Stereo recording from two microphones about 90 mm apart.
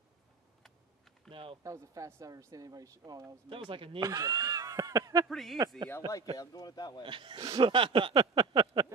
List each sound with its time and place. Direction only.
1.3 s a sound: 75° right (ahead or behind)
1.6 s speech: 35° right (ahead or behind)
3.4 s a sound: 70° right (ahead or behind)
4.0 s speech: 45° right (ahead or behind)
5.3 s speech: 5° left (ahead or behind)
5.9 s speech: 25° left (ahead or behind)
6.3 s speech: 40° left (ahead or behind)
7.0 s speech: 65° right (ahead or behind)
7.6 s a sound: 70° right (ahead or behind)